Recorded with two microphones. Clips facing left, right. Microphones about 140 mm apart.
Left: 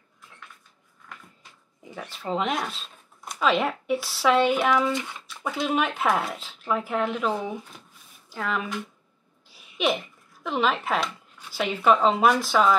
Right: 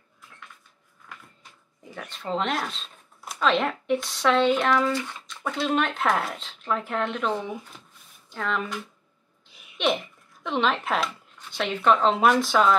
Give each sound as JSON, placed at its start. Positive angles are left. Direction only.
{"t": 2.0, "sound": "speech", "side_deg": 5}
{"t": 9.8, "sound": "speech", "side_deg": 5}